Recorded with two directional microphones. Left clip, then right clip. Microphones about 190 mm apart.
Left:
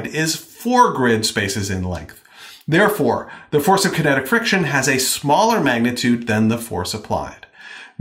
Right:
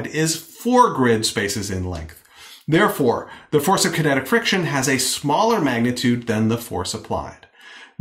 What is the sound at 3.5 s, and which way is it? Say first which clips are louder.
Speech: left 2 dB; 40° left (ahead or behind).